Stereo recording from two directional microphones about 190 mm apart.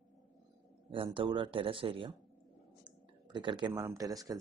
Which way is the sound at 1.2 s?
25° right (ahead or behind).